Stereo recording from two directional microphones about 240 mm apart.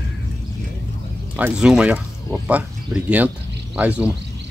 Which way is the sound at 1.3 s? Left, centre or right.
Centre.